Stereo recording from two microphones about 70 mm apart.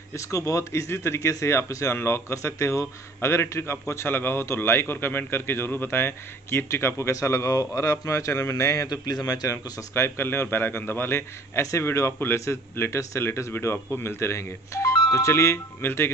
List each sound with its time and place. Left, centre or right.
0.1 s a man's voice: left
7.2 s a man's voice: left
8.8 s a man's voice: left
9.9 s speech: left